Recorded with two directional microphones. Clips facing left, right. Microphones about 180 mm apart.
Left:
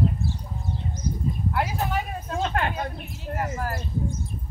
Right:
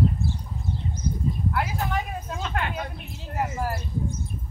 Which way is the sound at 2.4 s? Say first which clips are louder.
Left 5 dB; 40° left (ahead or behind).